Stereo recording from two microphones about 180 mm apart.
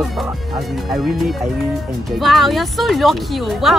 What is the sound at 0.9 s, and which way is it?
Speech, centre (ahead or behind).